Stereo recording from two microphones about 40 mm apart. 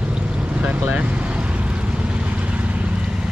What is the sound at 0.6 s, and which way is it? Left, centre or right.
Vehicle, right.